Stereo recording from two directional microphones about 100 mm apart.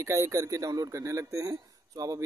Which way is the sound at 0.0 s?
30° right (ahead or behind).